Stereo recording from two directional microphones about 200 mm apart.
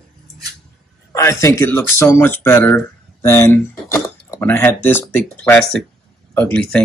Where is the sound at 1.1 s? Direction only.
15° left (ahead or behind).